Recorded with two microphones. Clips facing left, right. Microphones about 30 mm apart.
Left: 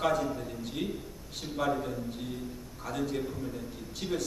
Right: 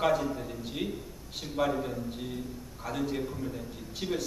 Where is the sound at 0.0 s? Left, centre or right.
Centre.